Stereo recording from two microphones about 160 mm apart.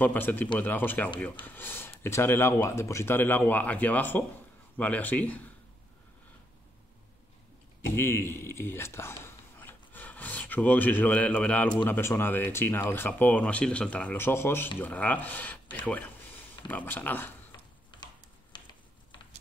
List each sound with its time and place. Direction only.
0.0 s speech: 10° left (ahead or behind)
7.9 s speech: 15° left (ahead or behind)
17.9 s a sound: 30° left (ahead or behind)